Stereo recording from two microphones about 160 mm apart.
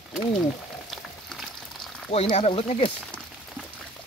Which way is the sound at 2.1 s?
40° left (ahead or behind).